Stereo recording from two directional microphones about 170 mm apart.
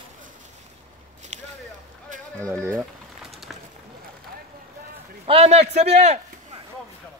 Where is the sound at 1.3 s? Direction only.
45° right (ahead or behind).